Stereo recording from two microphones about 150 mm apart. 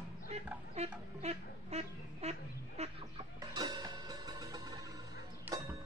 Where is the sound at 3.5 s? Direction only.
30° right (ahead or behind).